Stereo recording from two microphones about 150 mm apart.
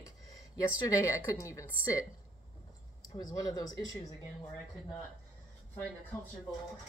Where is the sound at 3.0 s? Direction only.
25° left (ahead or behind).